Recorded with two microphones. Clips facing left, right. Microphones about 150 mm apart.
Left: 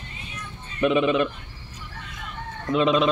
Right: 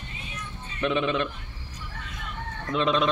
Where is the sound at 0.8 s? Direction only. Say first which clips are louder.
Left 5 dB; 10° left (ahead or behind).